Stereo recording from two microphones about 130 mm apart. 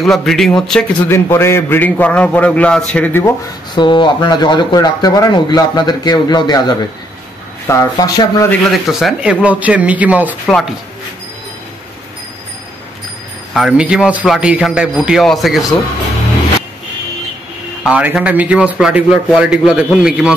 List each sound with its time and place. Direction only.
0.0 s a man's voice: 5° left (ahead or behind)
1.0 s a man's voice: 20° left (ahead or behind)
3.7 s speech: 35° left (ahead or behind)
8.6 s a man's voice: centre (ahead or behind)
10.4 s a man's voice: 5° left (ahead or behind)
13.5 s a man's voice: centre (ahead or behind)
17.8 s a man's voice: 10° right (ahead or behind)